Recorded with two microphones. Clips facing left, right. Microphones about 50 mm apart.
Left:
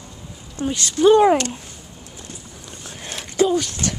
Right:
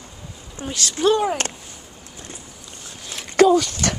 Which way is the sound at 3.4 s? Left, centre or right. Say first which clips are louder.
Right 4 dB; right.